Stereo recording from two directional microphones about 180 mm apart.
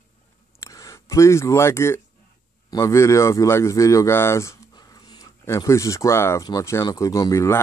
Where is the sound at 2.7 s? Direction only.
15° left (ahead or behind).